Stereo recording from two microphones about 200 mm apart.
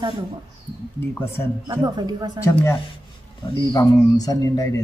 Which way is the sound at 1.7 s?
20° right (ahead or behind).